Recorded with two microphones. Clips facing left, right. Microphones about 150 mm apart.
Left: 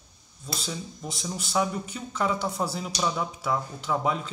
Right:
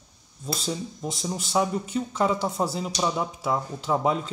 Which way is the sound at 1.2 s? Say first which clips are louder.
Right 2 dB; 25° right (ahead or behind).